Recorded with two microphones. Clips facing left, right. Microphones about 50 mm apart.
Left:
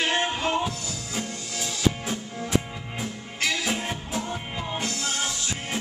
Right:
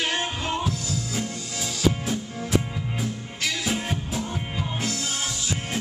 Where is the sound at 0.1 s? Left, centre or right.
Left.